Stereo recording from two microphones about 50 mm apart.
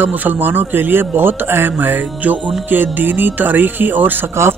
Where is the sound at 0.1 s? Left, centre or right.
Right.